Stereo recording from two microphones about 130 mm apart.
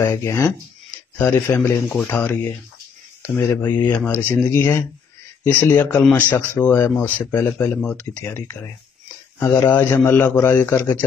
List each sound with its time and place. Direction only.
0.0 s a man's voice: 20° left (ahead or behind)